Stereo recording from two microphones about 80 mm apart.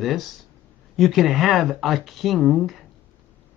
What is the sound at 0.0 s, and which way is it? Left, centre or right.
Speech, centre.